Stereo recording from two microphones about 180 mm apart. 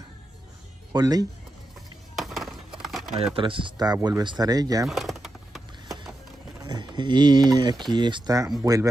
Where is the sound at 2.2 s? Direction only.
Centre (ahead or behind).